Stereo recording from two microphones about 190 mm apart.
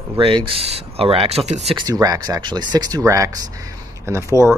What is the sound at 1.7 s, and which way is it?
A man's voice, 20° right (ahead or behind).